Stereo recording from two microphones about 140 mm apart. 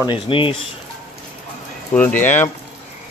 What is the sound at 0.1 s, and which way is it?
Speech, 35° left (ahead or behind).